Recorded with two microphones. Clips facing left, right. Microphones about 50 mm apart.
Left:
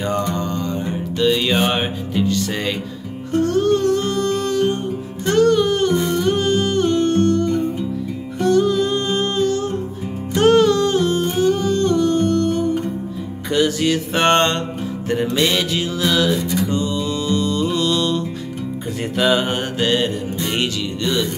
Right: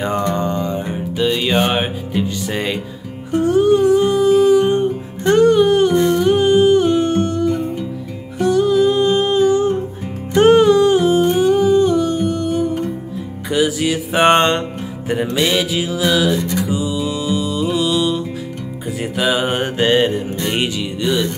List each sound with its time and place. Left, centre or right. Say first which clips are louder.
0.4 s music: right 3 dB; centre
10.3 s humming: right 3 dB; centre
13.5 s music: even; centre
15.3 s music: right 3 dB; centre